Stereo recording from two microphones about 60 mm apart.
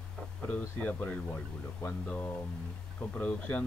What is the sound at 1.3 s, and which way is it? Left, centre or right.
Speech, left.